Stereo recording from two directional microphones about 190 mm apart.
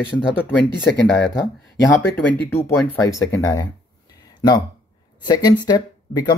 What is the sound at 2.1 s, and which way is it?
Speech, 10° left (ahead or behind).